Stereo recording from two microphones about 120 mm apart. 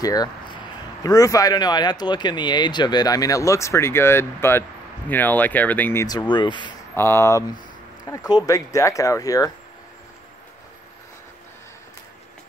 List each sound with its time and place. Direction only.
0.0 s speech: 30° left (ahead or behind); by 6.0 s 15° left (ahead or behind)
6.0 s speech: 40° left (ahead or behind)
7.0 s speech: 20° left (ahead or behind)